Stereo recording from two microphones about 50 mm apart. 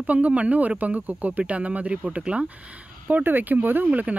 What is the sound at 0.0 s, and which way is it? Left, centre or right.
Speech, right.